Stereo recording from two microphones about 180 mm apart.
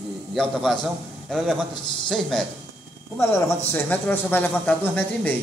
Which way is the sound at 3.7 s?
10° left (ahead or behind).